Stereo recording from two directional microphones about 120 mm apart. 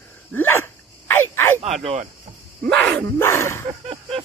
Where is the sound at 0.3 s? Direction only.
15° left (ahead or behind).